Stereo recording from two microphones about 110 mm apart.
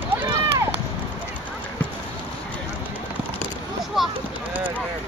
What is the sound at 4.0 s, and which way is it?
Speech, centre (ahead or behind).